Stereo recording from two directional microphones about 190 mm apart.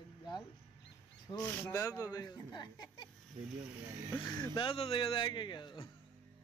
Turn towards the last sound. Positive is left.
turn(degrees=25)  # may be behind; listen again after turning